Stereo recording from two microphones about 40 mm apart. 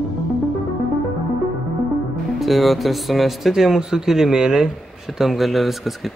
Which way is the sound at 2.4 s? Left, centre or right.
Centre.